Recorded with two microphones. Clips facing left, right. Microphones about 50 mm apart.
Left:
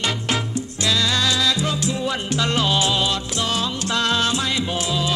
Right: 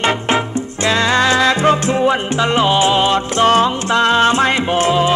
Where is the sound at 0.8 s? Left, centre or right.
Right.